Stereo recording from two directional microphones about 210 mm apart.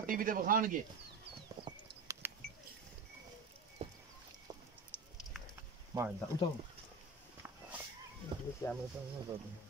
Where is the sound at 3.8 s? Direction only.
25° right (ahead or behind).